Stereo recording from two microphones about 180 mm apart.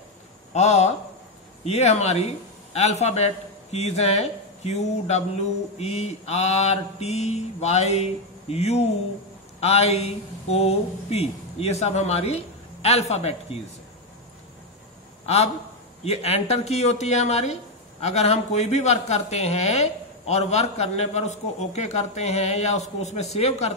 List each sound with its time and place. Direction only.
0.5 s speech: 40° left (ahead or behind)
16.0 s speech: 35° left (ahead or behind)